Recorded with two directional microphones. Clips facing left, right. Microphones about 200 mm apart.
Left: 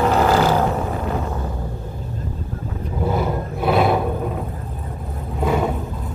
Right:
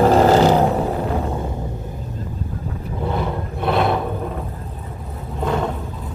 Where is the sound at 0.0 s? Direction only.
30° right (ahead or behind).